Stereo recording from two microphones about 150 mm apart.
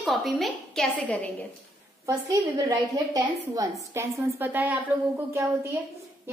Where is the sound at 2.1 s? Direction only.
20° right (ahead or behind).